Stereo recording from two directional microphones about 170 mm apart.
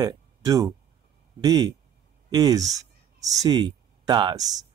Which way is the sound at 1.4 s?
20° right (ahead or behind).